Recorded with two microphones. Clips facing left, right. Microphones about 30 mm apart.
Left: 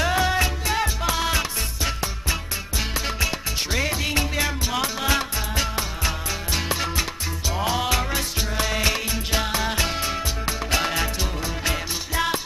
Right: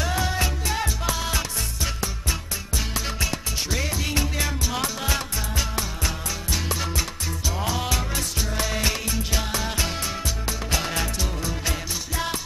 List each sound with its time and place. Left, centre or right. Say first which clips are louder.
0.0 s music: left 4 dB; left
3.7 s music: left 3 dB; left